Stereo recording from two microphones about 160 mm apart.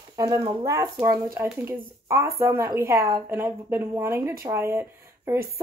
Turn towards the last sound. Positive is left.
turn(degrees=-15)  # may be behind; listen again after turning